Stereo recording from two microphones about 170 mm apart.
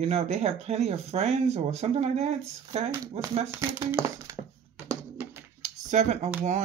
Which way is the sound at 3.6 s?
20° right (ahead or behind).